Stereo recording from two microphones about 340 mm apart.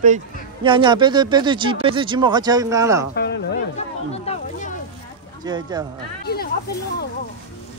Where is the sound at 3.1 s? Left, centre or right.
Left.